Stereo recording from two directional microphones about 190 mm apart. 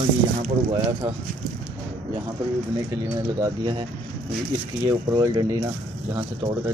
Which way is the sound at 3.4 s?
25° right (ahead or behind).